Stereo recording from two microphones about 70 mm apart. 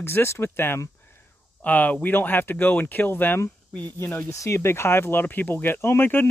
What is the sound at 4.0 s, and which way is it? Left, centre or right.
Speech, left.